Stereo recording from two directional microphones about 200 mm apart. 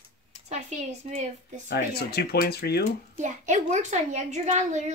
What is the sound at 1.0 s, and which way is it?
Speech, 35° right (ahead or behind).